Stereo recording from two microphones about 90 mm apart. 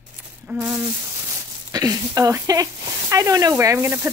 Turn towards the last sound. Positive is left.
turn(degrees=-30)  # may be behind; listen again after turning